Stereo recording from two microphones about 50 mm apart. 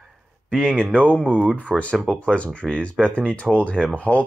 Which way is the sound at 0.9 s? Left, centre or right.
Left.